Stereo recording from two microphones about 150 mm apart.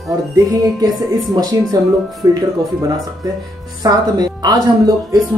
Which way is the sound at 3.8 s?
25° right (ahead or behind).